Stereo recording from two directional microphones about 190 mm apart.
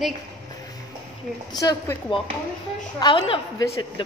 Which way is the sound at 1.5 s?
20° left (ahead or behind).